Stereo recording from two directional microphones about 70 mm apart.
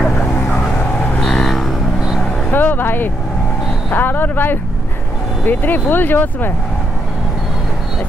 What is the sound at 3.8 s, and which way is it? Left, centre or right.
Vehicle, left.